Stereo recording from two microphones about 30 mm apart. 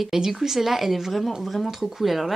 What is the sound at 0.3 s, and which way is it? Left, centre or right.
Speech, centre.